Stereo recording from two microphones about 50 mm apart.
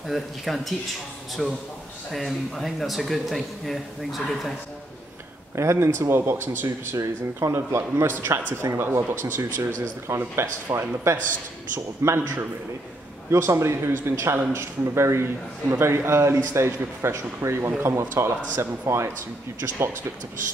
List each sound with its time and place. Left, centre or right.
0.1 s speech: centre
5.6 s speech: right
5.9 s speech: right
8.1 s speech: right
9.4 s speech: right
13.3 s speech: right
17.6 s speech: right
17.9 s speech: right